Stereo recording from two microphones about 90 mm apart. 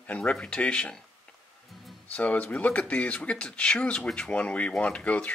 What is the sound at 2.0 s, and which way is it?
Speech, 15° left (ahead or behind).